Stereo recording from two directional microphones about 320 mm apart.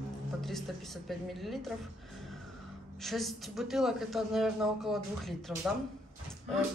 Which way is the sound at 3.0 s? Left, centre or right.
Centre.